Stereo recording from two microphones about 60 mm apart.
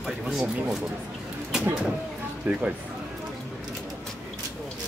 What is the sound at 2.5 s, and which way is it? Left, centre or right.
Speech, right.